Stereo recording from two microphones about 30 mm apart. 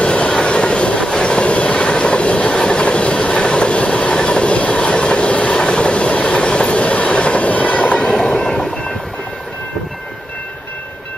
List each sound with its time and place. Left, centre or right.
0.0 s train: left
8.1 s train: centre